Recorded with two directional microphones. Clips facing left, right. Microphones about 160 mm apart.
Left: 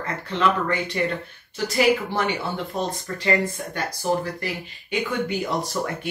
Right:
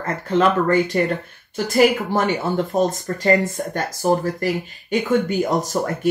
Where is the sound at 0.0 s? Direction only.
45° right (ahead or behind).